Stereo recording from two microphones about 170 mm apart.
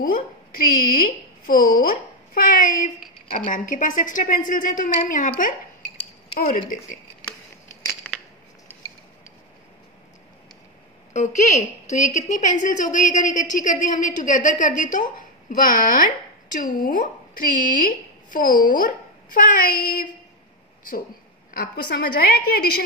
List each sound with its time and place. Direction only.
0.0 s a woman's voice: 55° left (ahead or behind)
7.9 s scissors: centre (ahead or behind)
11.1 s a woman's voice: 45° left (ahead or behind)
21.5 s a woman's voice: 55° left (ahead or behind)